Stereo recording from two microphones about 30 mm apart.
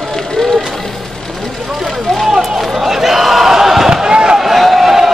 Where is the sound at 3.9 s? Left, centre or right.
Right.